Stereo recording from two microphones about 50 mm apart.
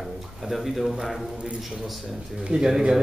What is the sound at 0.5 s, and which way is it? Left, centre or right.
Speech, centre.